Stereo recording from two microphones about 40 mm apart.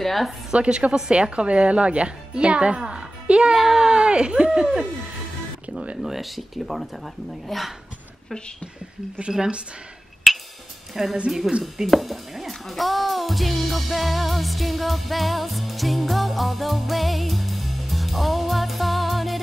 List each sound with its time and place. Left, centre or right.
0.0 s speech: centre
0.5 s speech: right
3.5 s speech: centre
6.0 s speech: centre
9.3 s speech: centre
10.3 s music: centre
10.9 s speech: centre
11.6 s music: centre